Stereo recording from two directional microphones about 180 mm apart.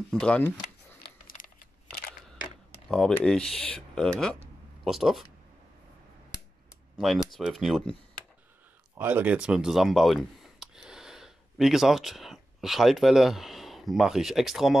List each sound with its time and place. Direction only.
0.1 s speech: 5° left (ahead or behind)
1.2 s computer keyboard: 50° left (ahead or behind)
2.7 s speech: 5° left (ahead or behind)
7.0 s speech: centre (ahead or behind)
8.9 s speech: 10° right (ahead or behind)